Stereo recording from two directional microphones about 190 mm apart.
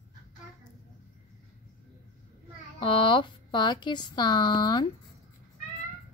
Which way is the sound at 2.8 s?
25° left (ahead or behind).